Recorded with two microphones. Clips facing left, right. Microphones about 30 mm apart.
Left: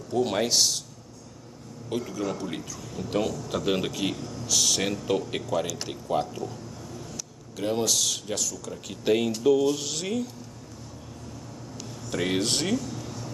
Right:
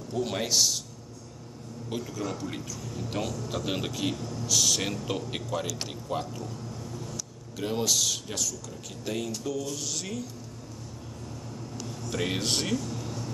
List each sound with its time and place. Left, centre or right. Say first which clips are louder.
0.1 s a man's voice: left 4 dB; centre
1.9 s a man's voice: left 4 dB; centre
7.5 s speech: left 2 dB; centre
9.0 s speech: left 10 dB; left; by 10.3 s centre
12.1 s a man's voice: left 3 dB; centre